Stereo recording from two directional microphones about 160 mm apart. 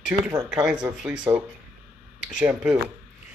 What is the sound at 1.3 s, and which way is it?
Speech, 25° right (ahead or behind).